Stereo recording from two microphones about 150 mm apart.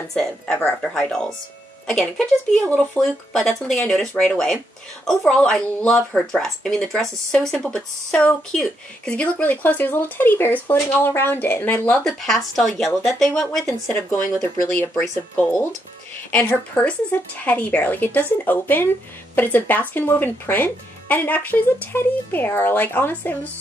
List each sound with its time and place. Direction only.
0.1 s speech: 5° left (ahead or behind)
12.0 s speech: centre (ahead or behind)
13.8 s speech: 15° left (ahead or behind)